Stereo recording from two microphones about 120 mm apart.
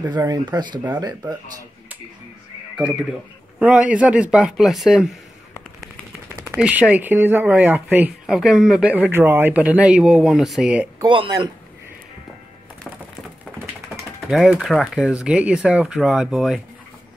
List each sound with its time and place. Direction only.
0.1 s speech: 35° right (ahead or behind)
3.5 s speech: 10° right (ahead or behind)
6.5 s speech: 10° right (ahead or behind)
8.3 s speech: 5° right (ahead or behind)
11.0 s speech: 35° right (ahead or behind)
14.3 s speech: 5° right (ahead or behind)